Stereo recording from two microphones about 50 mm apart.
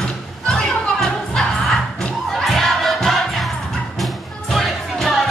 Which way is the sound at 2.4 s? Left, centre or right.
Centre.